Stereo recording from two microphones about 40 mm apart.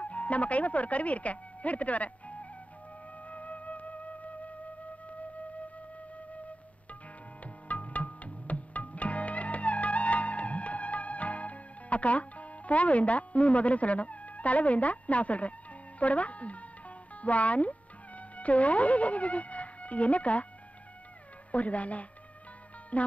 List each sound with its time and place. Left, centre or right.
0.0 s speech: left
3.3 s flute: left
7.6 s music: left
16.0 s speech: left
21.5 s speech: left